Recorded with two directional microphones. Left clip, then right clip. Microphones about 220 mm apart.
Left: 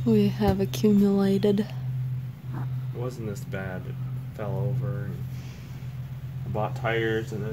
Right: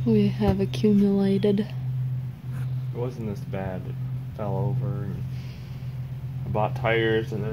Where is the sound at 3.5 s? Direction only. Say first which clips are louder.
Right 3 dB; 45° left (ahead or behind).